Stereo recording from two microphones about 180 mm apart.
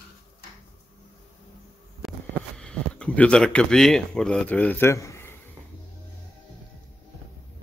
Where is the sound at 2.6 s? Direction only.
5° left (ahead or behind).